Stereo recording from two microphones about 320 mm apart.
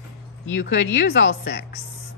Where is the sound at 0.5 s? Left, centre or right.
Left.